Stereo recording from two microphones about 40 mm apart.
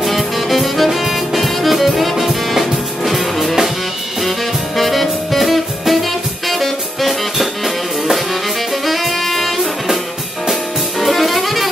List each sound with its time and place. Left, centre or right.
0.0 s music: centre
4.7 s saxophone: centre
6.5 s music: centre
8.8 s saxophone: centre
10.5 s music: centre